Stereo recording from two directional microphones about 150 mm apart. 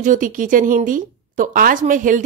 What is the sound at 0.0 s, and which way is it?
A woman's voice, 60° right (ahead or behind).